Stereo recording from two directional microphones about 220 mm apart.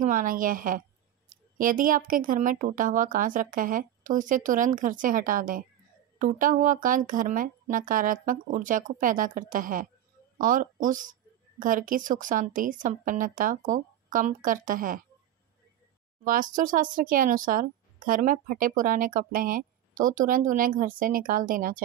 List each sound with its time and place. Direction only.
0.0 s speech: 35° right (ahead or behind)
16.3 s speech: 35° right (ahead or behind)